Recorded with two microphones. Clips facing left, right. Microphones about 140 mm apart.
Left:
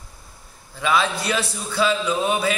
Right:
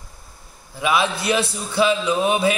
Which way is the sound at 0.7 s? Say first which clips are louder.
Right 1 dB; 15° right (ahead or behind).